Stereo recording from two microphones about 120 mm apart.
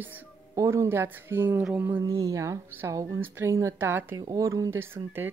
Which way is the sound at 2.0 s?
25° right (ahead or behind).